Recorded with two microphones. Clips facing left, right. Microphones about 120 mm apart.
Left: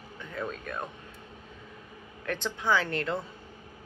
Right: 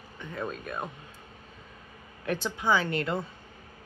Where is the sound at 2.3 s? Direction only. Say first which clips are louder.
Right 1 dB; 10° right (ahead or behind).